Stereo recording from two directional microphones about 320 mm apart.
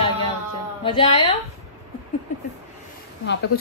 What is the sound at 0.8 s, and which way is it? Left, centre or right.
Speech, centre.